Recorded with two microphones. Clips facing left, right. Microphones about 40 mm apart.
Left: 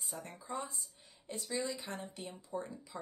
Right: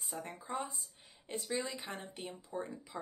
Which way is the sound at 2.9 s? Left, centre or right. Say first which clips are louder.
Right 1 dB; centre.